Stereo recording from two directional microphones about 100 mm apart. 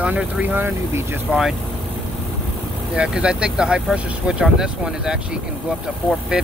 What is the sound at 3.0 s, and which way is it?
Speech, 5° right (ahead or behind).